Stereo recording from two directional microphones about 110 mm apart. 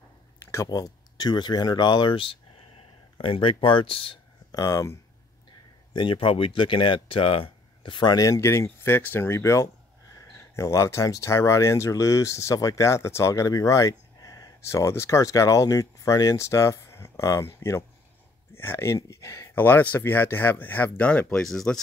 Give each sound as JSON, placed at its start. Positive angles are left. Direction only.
{"t": 0.4, "sound": "speech", "side_deg": 25}
{"t": 4.5, "sound": "speech", "side_deg": 30}
{"t": 5.9, "sound": "speech", "side_deg": 50}